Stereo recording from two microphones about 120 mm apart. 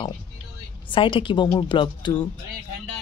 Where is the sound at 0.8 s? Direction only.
45° left (ahead or behind).